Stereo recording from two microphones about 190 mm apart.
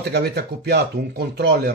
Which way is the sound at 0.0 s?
60° right (ahead or behind).